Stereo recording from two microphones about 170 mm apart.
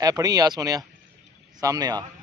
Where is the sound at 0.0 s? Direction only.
20° right (ahead or behind).